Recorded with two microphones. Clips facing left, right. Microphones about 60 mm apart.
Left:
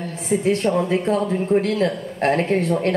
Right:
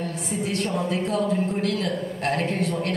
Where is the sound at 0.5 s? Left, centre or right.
Left.